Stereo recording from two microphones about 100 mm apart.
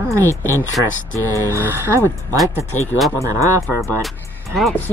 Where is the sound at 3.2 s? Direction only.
30° right (ahead or behind).